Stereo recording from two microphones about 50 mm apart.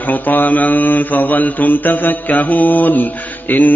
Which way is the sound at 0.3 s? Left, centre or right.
Left.